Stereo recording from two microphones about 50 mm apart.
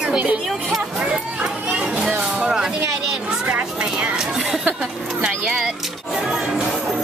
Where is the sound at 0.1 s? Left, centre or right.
Right.